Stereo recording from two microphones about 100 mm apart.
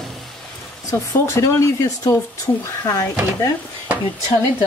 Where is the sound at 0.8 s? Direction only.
30° left (ahead or behind).